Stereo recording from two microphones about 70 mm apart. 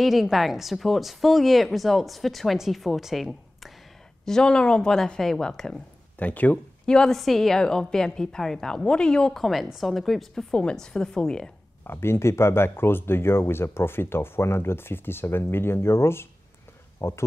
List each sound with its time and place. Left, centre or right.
0.0 s a woman's voice: centre
6.1 s speech: left
6.9 s a woman's voice: centre
10.5 s a woman's voice: centre
11.8 s speech: left